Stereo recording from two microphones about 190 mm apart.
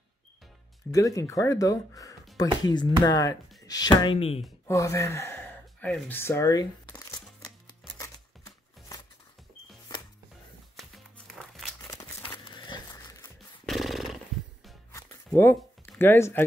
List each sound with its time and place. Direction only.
0.9 s speech: 15° left (ahead or behind)
4.6 s speech: 15° left (ahead or behind)
8.0 s music: 15° left (ahead or behind)
10.8 s music: centre (ahead or behind)
12.5 s a sound: 25° left (ahead or behind)
13.7 s dog: centre (ahead or behind)
15.2 s a sound: 10° left (ahead or behind)